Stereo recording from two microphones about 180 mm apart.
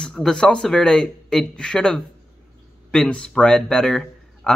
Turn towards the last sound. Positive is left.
turn(degrees=5)  # may be behind; listen again after turning